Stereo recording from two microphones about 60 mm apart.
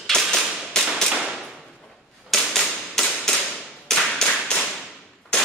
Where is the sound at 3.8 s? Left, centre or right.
Centre.